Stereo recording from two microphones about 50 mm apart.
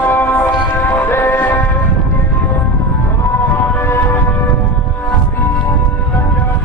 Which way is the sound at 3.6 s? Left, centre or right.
Left.